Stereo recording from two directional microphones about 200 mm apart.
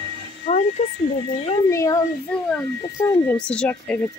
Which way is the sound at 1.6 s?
15° left (ahead or behind).